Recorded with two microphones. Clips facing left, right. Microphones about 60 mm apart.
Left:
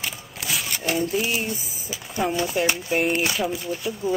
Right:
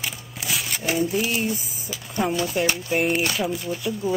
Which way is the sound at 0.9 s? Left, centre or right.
Centre.